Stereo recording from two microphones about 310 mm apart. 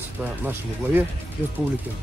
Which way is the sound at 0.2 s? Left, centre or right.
Centre.